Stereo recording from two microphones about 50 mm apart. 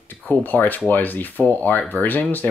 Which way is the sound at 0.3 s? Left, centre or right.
Left.